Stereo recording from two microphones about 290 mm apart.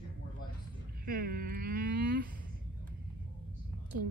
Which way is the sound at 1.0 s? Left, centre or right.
Right.